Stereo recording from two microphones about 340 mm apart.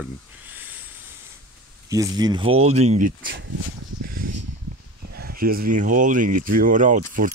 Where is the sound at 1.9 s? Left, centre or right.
Centre; by 3.5 s right.